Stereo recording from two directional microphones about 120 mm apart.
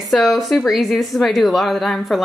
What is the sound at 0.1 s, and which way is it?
Speech, centre (ahead or behind).